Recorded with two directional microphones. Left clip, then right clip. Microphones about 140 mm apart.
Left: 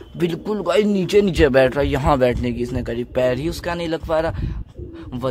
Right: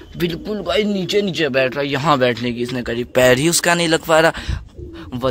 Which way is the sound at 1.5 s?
25° left (ahead or behind).